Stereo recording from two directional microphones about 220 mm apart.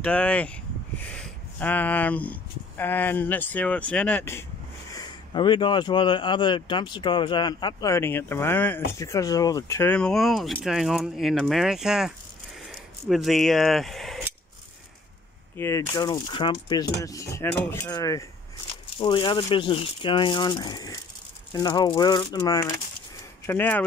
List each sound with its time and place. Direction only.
0.0 s speech: 5° left (ahead or behind)
15.5 s speech: 10° left (ahead or behind)